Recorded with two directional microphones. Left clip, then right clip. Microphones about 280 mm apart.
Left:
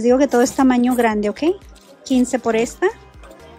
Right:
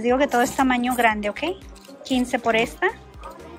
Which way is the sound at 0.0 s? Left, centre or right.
Centre.